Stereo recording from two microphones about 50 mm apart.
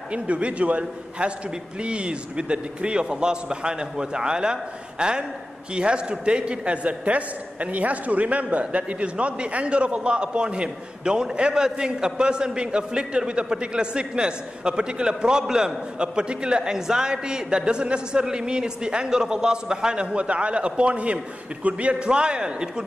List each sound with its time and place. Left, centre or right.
0.1 s a man's voice: right